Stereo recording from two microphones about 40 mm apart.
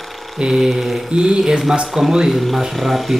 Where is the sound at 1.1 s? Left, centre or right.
Right.